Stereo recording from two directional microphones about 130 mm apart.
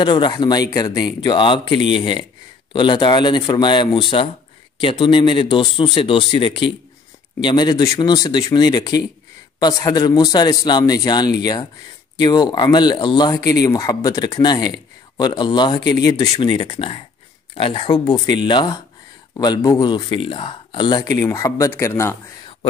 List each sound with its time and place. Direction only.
0.0 s speech: 35° left (ahead or behind)
21.0 s speech: 25° left (ahead or behind)